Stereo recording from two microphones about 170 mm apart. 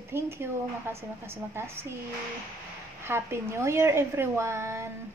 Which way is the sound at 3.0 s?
15° right (ahead or behind).